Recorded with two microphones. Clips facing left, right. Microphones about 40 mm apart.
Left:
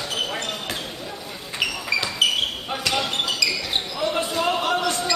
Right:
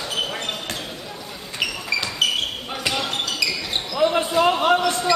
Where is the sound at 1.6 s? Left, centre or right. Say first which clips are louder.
Even; centre.